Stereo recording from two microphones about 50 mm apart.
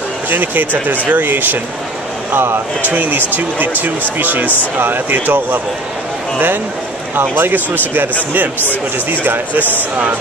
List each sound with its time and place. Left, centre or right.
0.3 s speech: right
2.3 s speech: right
2.8 s speech: right
9.1 s speech: right